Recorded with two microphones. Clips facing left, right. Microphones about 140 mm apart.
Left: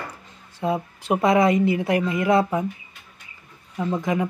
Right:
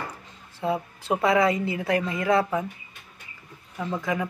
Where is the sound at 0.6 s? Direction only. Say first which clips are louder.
Left 2 dB; 15° left (ahead or behind).